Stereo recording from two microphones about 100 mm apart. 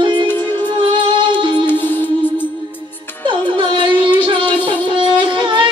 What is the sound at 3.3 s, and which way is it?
Music, 55° right (ahead or behind).